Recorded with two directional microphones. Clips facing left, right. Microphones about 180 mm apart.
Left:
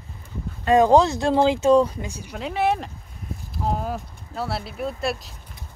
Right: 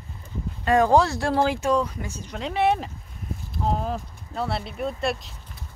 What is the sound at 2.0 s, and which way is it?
Speech, 10° left (ahead or behind).